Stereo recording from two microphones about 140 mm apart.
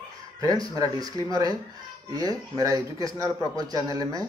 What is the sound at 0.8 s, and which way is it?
Speech, 25° right (ahead or behind).